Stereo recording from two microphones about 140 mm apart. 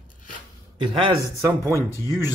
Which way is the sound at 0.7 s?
35° right (ahead or behind).